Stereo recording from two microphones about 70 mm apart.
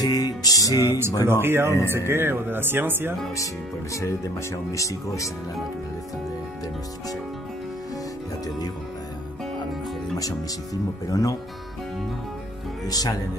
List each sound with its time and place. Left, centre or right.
0.0 s music: left
0.7 s speech: right
3.9 s speech: left
10.1 s speech: left
12.8 s speech: left